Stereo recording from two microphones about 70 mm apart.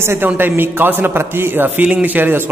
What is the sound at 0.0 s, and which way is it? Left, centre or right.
A man's voice, right.